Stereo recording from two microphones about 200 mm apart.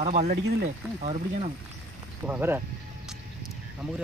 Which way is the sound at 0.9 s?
35° right (ahead or behind).